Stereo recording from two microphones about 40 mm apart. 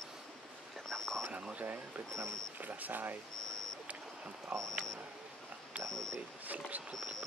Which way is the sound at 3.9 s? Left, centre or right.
Right.